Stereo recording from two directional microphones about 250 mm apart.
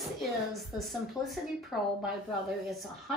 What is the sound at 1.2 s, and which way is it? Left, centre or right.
Speech, centre.